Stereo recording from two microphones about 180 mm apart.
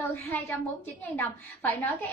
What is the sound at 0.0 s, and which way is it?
A woman's voice, 10° left (ahead or behind).